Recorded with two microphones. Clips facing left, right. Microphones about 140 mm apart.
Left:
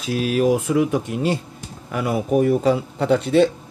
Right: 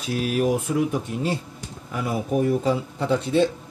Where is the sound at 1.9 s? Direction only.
70° left (ahead or behind).